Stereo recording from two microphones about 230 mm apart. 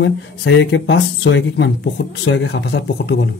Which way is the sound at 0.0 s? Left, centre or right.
Left.